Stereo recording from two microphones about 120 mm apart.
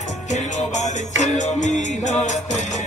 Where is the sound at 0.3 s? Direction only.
75° left (ahead or behind).